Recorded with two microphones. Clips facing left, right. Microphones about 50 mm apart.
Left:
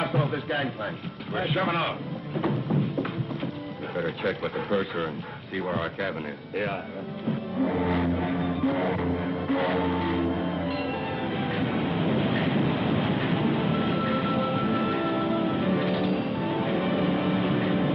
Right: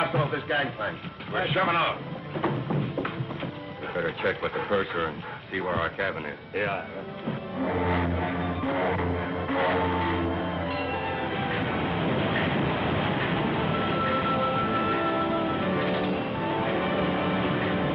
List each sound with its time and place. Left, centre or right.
0.1 s a man's voice: centre
1.7 s a sound: centre
3.9 s a man's voice: centre
7.2 s music: centre
10.8 s train: centre
13.6 s vehicle: centre
14.1 s a sound: centre
14.7 s music: centre
16.2 s music: centre
16.9 s a sound: centre
17.4 s vehicle: centre